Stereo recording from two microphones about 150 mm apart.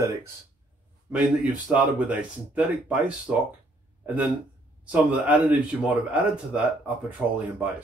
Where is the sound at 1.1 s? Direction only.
5° right (ahead or behind).